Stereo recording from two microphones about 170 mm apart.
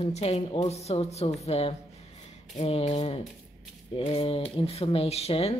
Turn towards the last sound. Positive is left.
turn(degrees=35)  # may be behind; listen again after turning